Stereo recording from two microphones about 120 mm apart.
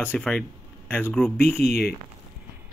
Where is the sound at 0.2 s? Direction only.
5° left (ahead or behind).